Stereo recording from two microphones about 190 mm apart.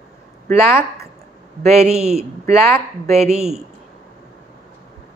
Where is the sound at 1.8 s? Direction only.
5° right (ahead or behind).